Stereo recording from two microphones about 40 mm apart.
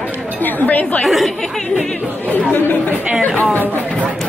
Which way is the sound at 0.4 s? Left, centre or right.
Left.